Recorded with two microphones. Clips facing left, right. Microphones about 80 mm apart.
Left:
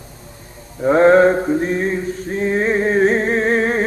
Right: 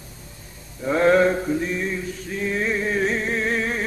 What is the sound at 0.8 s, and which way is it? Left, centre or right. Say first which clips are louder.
Mantra: left 6 dB; left.